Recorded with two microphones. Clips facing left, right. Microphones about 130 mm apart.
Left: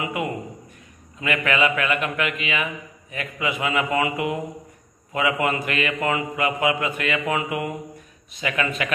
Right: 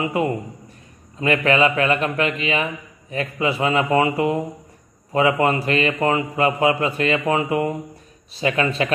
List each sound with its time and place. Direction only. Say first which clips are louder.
0.0 s a man's voice: right 5 dB; 35° right (ahead or behind)